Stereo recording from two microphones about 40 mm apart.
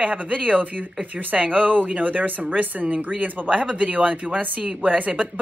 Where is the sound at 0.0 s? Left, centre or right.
Right.